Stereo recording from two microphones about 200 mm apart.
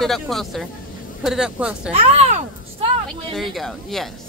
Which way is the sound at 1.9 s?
35° right (ahead or behind).